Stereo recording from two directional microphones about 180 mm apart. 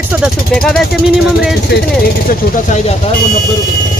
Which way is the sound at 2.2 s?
45° left (ahead or behind).